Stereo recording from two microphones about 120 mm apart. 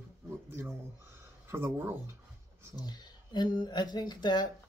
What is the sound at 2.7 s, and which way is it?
Speech, 35° left (ahead or behind).